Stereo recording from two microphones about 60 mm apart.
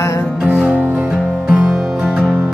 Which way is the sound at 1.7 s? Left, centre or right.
Centre.